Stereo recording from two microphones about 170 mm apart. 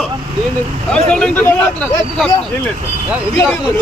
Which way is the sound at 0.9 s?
5° left (ahead or behind).